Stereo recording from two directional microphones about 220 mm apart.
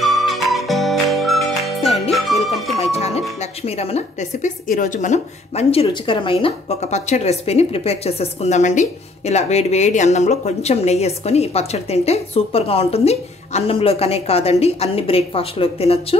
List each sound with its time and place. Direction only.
0.0 s music: centre (ahead or behind)
2.8 s speech: 25° left (ahead or behind)